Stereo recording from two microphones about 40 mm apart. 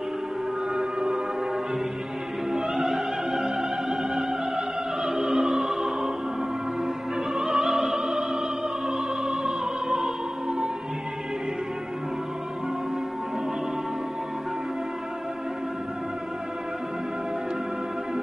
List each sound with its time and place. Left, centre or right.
0.7 s music: centre
2.5 s music: centre
7.3 s opera: centre